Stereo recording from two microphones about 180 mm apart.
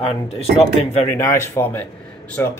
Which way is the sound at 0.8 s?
35° left (ahead or behind).